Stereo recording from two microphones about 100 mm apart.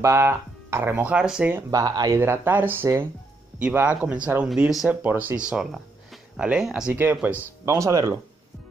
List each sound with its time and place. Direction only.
0.0 s speech: 25° right (ahead or behind); by 1.5 s 10° right (ahead or behind)
1.7 s speech: 40° right (ahead or behind)
2.1 s speech: 25° right (ahead or behind)
3.5 s a man's voice: 15° right (ahead or behind)
4.8 s a man's voice: 15° right (ahead or behind)
7.6 s speech: 30° right (ahead or behind)